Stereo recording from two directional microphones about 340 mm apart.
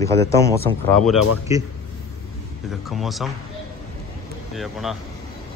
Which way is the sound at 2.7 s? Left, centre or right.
Centre.